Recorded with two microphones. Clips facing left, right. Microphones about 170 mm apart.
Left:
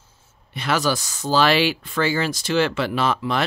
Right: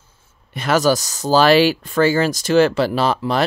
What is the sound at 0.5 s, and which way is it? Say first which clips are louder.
Speech: right 6 dB; 45° right (ahead or behind).